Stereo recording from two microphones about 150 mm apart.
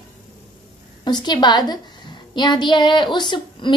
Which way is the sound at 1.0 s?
30° left (ahead or behind).